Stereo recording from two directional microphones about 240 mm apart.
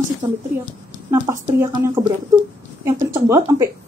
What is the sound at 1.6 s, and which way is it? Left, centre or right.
Speech, centre.